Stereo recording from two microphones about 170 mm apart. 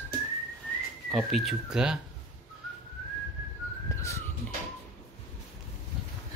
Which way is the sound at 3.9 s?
15° left (ahead or behind).